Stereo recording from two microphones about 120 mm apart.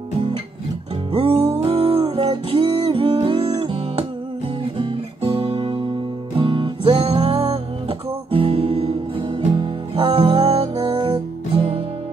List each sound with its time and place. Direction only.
1.1 s music: 50° right (ahead or behind)
4.7 s guitar: 45° right (ahead or behind)
6.3 s music: 45° right (ahead or behind)